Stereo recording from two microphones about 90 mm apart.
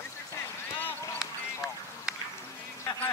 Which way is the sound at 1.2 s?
5° right (ahead or behind).